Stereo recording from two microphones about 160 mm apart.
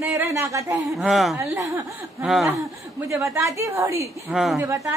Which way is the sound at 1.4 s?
15° right (ahead or behind).